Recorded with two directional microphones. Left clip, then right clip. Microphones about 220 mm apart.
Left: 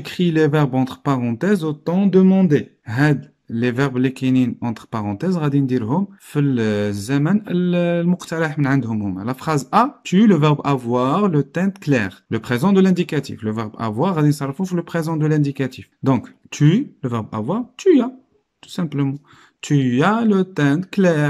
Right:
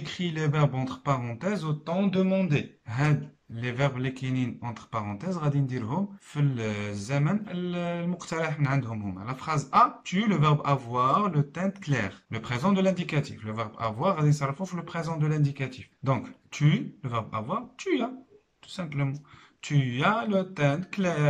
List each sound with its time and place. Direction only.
0.0 s speech: 50° left (ahead or behind)